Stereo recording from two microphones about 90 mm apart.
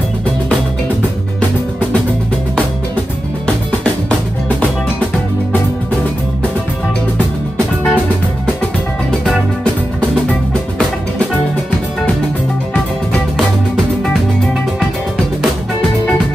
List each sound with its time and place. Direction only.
7.5 s music: 20° left (ahead or behind)